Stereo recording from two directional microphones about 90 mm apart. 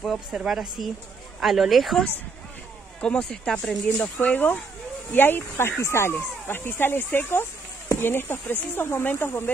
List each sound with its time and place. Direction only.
0.0 s speech: centre (ahead or behind); by 9.5 s 25° left (ahead or behind)